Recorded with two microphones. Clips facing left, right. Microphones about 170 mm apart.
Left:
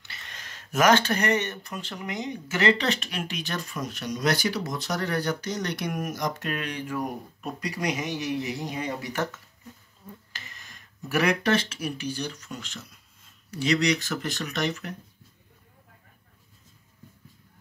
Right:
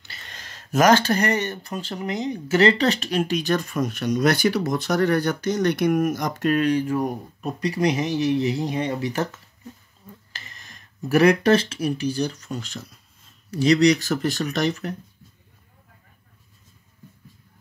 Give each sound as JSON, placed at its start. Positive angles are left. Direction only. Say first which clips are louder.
{"t": 0.1, "sound": "speech", "louder": "right 2 dB", "side_deg": -35}
{"t": 10.3, "sound": "speech", "louder": "right 2 dB", "side_deg": -35}